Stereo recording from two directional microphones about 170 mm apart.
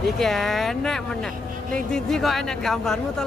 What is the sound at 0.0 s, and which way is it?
Speech, centre (ahead or behind).